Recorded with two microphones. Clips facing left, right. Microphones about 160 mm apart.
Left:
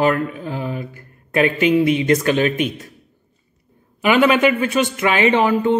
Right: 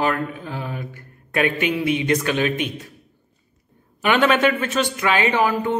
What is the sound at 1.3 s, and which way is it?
Speech, 40° left (ahead or behind).